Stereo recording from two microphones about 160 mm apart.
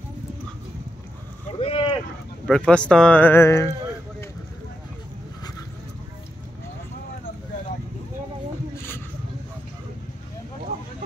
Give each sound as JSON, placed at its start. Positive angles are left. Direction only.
{"t": 1.5, "sound": "boat", "side_deg": 35}
{"t": 2.4, "sound": "speech", "side_deg": 5}
{"t": 2.9, "sound": "a sound", "side_deg": 5}